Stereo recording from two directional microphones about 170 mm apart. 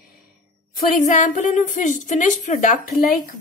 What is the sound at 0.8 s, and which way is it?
A woman's voice, 45° left (ahead or behind).